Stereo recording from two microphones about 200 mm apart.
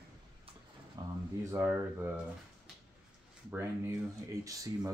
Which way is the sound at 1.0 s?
20° right (ahead or behind).